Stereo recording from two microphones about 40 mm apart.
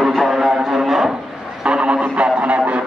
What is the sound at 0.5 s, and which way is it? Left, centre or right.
Speech, centre.